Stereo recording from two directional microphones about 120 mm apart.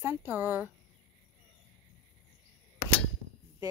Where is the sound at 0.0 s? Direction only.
20° right (ahead or behind).